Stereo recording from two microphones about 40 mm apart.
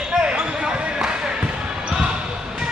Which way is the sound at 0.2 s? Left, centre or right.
Right.